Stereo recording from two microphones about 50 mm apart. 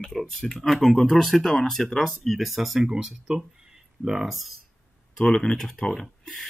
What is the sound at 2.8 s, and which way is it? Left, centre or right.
Speech, centre.